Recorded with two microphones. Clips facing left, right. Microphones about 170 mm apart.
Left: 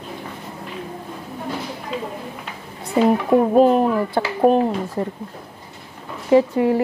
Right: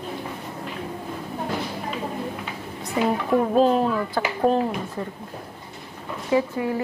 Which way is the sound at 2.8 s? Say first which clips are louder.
Left 6 dB; 30° left (ahead or behind).